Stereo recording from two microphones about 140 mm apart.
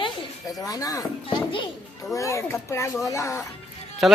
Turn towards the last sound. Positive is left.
turn(degrees=0)  # may be behind; listen again after turning